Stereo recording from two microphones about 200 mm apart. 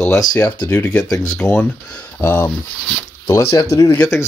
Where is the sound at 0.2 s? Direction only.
20° left (ahead or behind).